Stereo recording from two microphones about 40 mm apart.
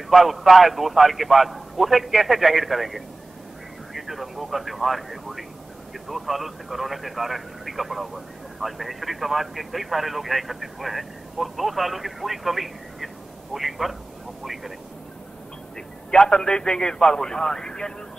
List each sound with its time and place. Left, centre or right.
0.1 s speech: centre
16.1 s speech: centre